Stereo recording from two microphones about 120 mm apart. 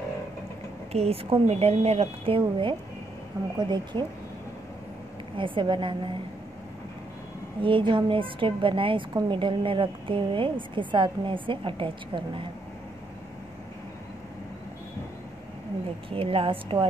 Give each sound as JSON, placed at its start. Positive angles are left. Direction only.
{"t": 0.9, "sound": "a woman's voice", "side_deg": -55}
{"t": 5.4, "sound": "a woman's voice", "side_deg": -45}
{"t": 7.6, "sound": "a woman's voice", "side_deg": -45}
{"t": 16.1, "sound": "a woman's voice", "side_deg": -50}